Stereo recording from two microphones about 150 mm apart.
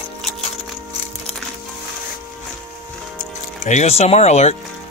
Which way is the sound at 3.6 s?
50° left (ahead or behind).